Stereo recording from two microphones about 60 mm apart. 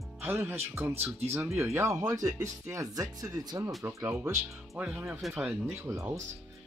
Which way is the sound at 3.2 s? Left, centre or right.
Right.